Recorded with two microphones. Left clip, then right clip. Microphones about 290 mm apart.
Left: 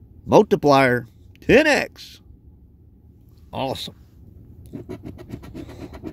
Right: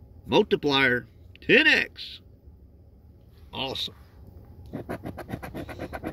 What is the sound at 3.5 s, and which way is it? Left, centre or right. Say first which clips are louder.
Speech: left 4 dB; left.